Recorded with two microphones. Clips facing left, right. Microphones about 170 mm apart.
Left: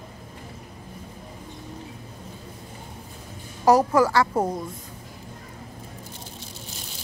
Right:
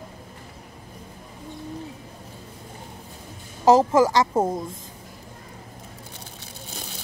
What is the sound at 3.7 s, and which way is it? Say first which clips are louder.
Speech: right 2 dB; 20° right (ahead or behind).